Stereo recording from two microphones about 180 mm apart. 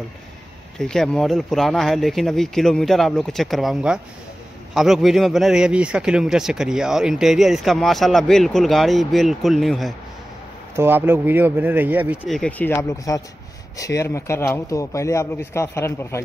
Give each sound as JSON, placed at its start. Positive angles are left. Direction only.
{"t": 0.7, "sound": "speech", "side_deg": 5}
{"t": 10.8, "sound": "speech", "side_deg": -10}
{"t": 12.2, "sound": "a man's voice", "side_deg": 5}